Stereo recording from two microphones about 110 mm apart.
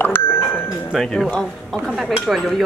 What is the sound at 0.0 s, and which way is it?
Music, 20° left (ahead or behind).